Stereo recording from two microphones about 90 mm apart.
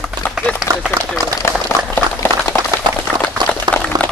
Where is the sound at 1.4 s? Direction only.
30° left (ahead or behind).